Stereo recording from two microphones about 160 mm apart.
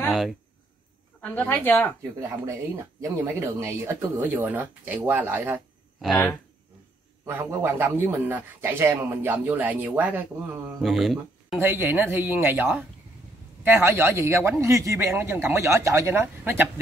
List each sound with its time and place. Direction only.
0.1 s speech: centre (ahead or behind)
1.2 s speech: 10° left (ahead or behind)
2.1 s speech: 20° right (ahead or behind)
7.2 s speech: 10° right (ahead or behind)
10.8 s speech: centre (ahead or behind)
11.6 s speech: 15° right (ahead or behind)